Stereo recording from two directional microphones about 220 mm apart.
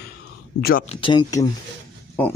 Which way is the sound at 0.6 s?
45° left (ahead or behind).